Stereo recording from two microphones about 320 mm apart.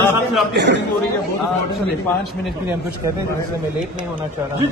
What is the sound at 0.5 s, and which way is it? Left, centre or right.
Speech, right.